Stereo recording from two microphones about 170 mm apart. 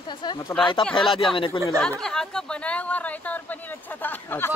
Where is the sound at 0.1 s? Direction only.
25° left (ahead or behind).